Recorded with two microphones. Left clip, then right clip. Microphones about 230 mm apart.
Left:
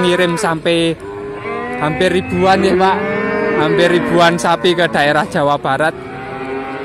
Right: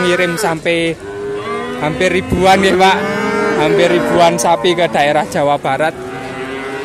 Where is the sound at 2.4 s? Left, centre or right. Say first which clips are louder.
Right 3 dB; centre.